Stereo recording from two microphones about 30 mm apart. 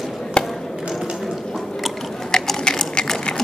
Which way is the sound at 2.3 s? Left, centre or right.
Centre.